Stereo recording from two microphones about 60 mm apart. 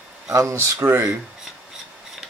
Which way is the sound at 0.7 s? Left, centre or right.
Right.